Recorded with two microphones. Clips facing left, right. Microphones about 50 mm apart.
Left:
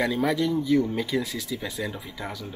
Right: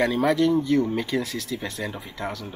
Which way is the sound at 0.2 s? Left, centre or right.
Centre.